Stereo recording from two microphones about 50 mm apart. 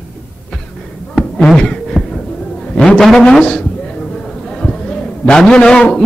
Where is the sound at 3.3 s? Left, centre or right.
Centre.